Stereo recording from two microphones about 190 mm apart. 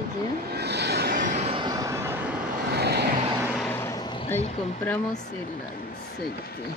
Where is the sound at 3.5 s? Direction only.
5° left (ahead or behind); by 4.3 s 25° left (ahead or behind).